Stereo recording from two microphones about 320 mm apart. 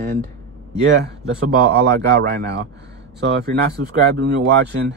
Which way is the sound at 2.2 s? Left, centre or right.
Right.